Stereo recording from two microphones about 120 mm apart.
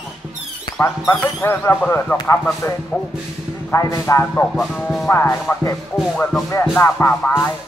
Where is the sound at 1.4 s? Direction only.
20° left (ahead or behind).